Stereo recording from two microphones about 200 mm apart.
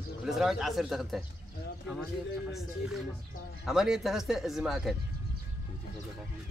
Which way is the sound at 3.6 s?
Centre (ahead or behind).